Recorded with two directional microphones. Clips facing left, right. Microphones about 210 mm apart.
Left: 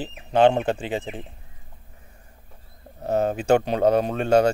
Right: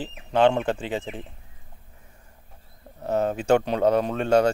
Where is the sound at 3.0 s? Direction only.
40° left (ahead or behind).